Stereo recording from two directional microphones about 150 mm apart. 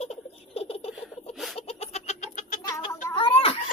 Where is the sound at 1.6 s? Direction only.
45° left (ahead or behind).